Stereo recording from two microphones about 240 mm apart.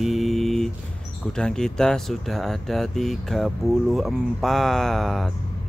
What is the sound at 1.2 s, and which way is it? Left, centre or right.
Speech, centre.